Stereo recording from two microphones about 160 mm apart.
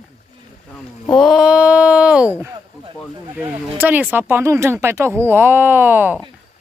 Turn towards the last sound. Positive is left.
turn(degrees=-10)  # may be behind; listen again after turning